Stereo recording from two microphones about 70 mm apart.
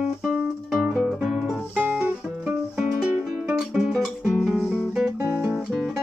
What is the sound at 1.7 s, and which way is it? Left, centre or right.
Music, centre.